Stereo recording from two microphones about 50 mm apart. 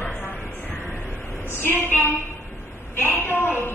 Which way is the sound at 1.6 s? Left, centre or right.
Left.